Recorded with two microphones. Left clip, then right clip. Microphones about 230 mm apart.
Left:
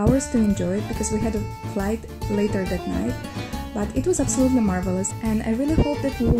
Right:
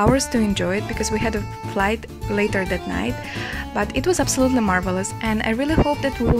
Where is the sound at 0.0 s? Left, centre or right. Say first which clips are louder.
Right 3 dB; right.